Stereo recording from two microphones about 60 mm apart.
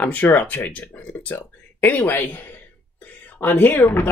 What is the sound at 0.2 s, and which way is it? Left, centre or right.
Speech, left.